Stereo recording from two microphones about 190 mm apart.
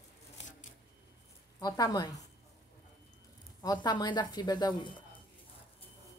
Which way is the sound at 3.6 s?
20° left (ahead or behind).